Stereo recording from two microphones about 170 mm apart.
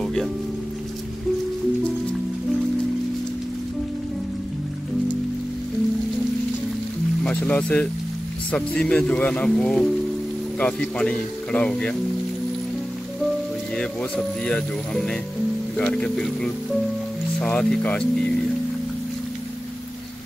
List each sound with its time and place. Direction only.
0.0 s music: centre (ahead or behind)
7.2 s a man's voice: 5° left (ahead or behind)
13.7 s a man's voice: 5° left (ahead or behind)